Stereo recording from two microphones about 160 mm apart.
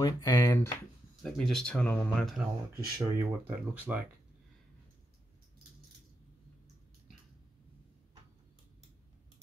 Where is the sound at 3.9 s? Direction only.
10° right (ahead or behind).